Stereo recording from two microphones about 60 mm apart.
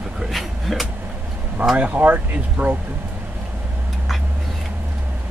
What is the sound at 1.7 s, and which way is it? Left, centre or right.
Speech, right.